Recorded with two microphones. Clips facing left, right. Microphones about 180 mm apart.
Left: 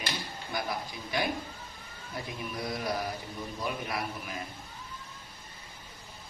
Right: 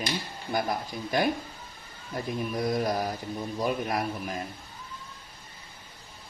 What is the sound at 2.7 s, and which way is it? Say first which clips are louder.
Speech: right 5 dB; 45° right (ahead or behind).